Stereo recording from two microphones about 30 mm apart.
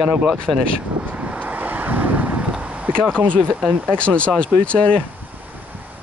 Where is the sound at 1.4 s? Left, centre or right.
Right.